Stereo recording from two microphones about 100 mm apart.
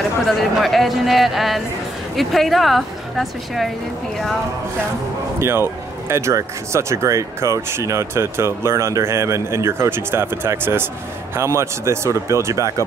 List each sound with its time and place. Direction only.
0.3 s a woman's voice: centre (ahead or behind)
5.4 s speech: 25° right (ahead or behind)